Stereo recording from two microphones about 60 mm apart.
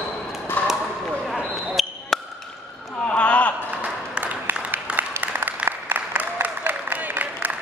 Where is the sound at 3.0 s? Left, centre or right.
Left.